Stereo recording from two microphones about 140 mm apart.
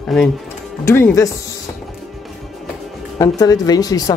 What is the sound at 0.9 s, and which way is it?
Speech, 20° left (ahead or behind).